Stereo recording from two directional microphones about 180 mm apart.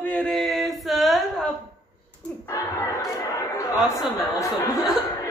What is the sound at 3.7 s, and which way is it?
Speech, centre (ahead or behind).